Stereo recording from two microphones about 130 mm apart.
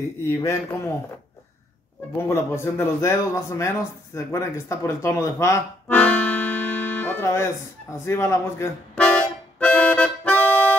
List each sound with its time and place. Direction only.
0.2 s a man's voice: 20° left (ahead or behind)
2.2 s a man's voice: 20° left (ahead or behind)
5.9 s accordion: 10° left (ahead or behind)
8.0 s a man's voice: 20° left (ahead or behind)
8.9 s music: 10° left (ahead or behind)